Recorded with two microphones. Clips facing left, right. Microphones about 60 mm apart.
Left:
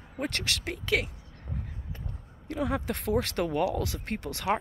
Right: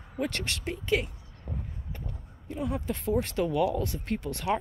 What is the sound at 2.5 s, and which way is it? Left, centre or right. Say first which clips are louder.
Speech: left 2 dB; left.